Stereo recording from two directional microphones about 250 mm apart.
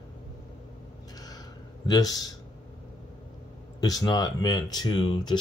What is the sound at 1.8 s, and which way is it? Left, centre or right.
Speech, centre.